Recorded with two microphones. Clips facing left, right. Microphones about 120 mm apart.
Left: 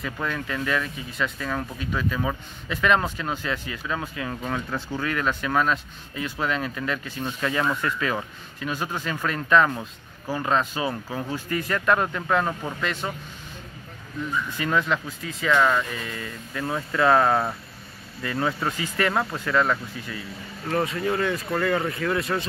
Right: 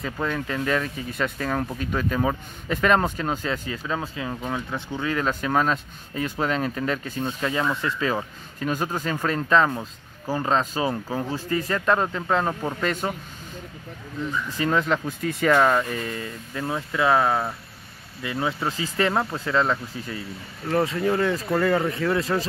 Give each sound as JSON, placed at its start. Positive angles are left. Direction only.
{"t": 0.0, "sound": "speech", "side_deg": -30}
{"t": 1.1, "sound": "speech", "side_deg": -50}
{"t": 1.5, "sound": "speech", "side_deg": -35}
{"t": 4.3, "sound": "speech", "side_deg": -15}
{"t": 7.2, "sound": "speech", "side_deg": -25}
{"t": 8.5, "sound": "speech", "side_deg": -40}
{"t": 9.7, "sound": "speech", "side_deg": -10}
{"t": 10.4, "sound": "speech", "side_deg": -35}
{"t": 12.8, "sound": "speech", "side_deg": -40}
{"t": 14.6, "sound": "speech", "side_deg": -35}
{"t": 15.0, "sound": "speech", "side_deg": -50}
{"t": 16.6, "sound": "speech", "side_deg": -15}
{"t": 18.2, "sound": "speech", "side_deg": -15}
{"t": 18.7, "sound": "speech", "side_deg": -25}